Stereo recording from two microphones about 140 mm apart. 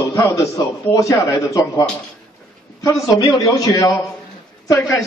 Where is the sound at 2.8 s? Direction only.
25° left (ahead or behind).